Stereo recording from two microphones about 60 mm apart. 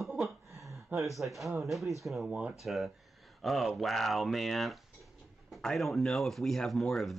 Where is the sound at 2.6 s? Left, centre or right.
Centre.